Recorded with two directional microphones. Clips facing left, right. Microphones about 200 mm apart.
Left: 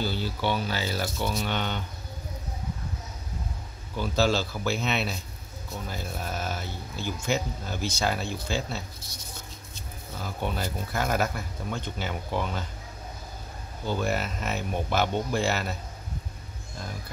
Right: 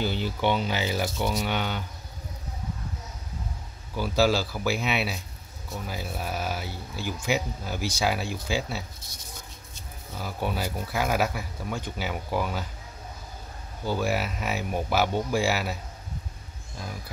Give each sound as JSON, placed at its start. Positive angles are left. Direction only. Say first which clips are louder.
{"t": 0.0, "sound": "speech", "louder": "right 2 dB", "side_deg": -15}
{"t": 3.9, "sound": "speech", "louder": "right 2 dB", "side_deg": -10}
{"t": 10.2, "sound": "speech", "louder": "right 1 dB", "side_deg": -10}
{"t": 13.8, "sound": "speech", "louder": "right 1 dB", "side_deg": -10}